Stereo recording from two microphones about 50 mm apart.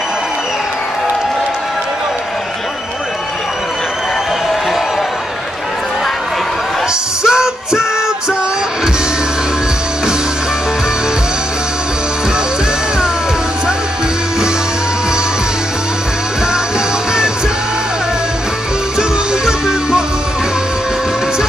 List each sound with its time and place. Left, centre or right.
7.2 s music: centre
18.9 s music: centre